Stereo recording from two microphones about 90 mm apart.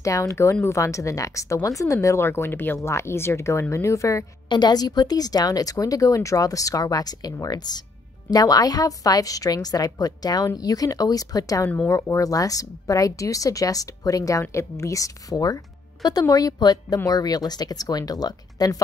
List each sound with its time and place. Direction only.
0.0 s speech: 35° left (ahead or behind)
4.5 s speech: 50° left (ahead or behind)